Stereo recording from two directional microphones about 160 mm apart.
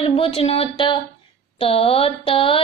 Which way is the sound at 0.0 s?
35° left (ahead or behind).